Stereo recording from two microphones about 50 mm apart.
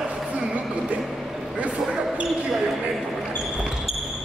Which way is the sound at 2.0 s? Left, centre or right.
Centre.